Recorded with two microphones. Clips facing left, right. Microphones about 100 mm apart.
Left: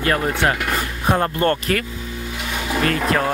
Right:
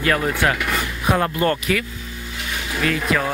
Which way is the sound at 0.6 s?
35° left (ahead or behind).